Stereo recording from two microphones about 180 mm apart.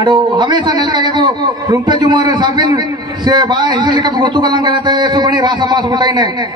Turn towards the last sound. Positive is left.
turn(degrees=-25)  # may be behind; listen again after turning